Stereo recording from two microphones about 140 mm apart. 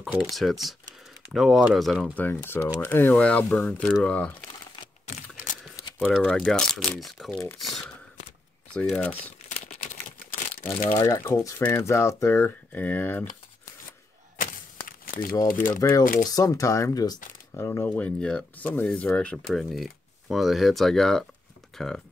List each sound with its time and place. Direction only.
0.3 s speech: centre (ahead or behind)
2.1 s speech: 15° left (ahead or behind)
6.2 s speech: 5° left (ahead or behind)
8.9 s speech: 10° left (ahead or behind)
9.7 s typing: 65° left (ahead or behind)
10.9 s speech: 20° left (ahead or behind)
14.4 s walk: 90° left
15.4 s speech: 75° left (ahead or behind)
16.3 s speech: 25° left (ahead or behind); by 22.0 s 5° left (ahead or behind)